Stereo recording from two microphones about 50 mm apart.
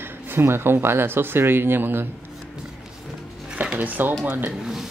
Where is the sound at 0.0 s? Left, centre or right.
Right.